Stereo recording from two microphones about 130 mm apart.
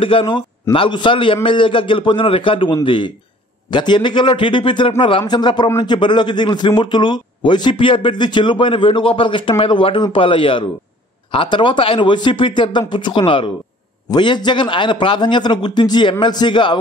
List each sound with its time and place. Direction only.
0.0 s a man's voice: 40° left (ahead or behind)